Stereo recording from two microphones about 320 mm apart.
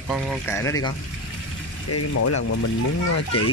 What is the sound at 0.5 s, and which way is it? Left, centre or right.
Speech, centre.